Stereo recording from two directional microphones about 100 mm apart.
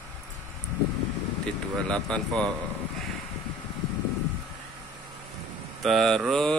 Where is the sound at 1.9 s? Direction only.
10° left (ahead or behind).